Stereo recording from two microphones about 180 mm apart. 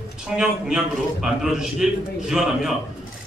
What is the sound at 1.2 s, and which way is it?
A man's voice, centre (ahead or behind).